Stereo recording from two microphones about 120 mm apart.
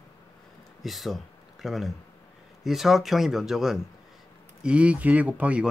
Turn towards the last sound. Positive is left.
turn(degrees=-10)  # may be behind; listen again after turning